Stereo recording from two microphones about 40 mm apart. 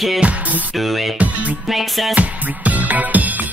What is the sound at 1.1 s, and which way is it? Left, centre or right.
Music, right.